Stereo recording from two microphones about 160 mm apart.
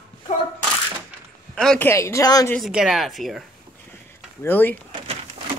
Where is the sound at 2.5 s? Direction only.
5° right (ahead or behind).